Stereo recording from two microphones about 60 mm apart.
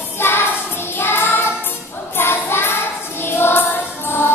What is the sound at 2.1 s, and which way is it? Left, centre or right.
Choir, left.